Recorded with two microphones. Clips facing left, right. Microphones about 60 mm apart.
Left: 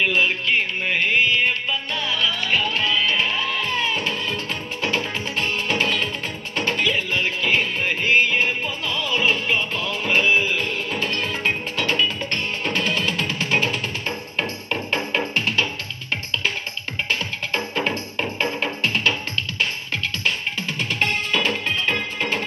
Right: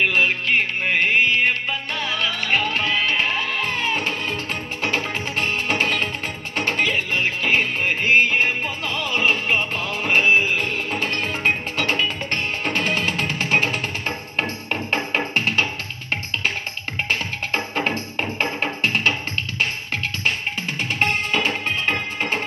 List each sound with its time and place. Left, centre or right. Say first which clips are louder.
0.0 s music: right 1 dB; right
17.1 s music: right 1 dB; right
21.0 s music: right 1 dB; right